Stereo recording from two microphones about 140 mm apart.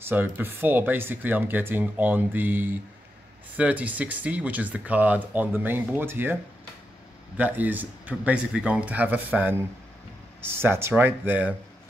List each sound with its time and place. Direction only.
0.0 s speech: 15° right (ahead or behind)
7.3 s speech: 10° right (ahead or behind)